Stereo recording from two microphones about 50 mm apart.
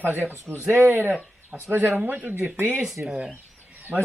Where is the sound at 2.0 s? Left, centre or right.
Right.